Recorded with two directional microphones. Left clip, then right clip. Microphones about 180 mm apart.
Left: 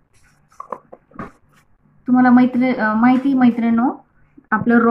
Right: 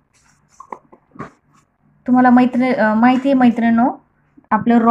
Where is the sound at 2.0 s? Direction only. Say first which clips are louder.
Right 2 dB; 35° right (ahead or behind).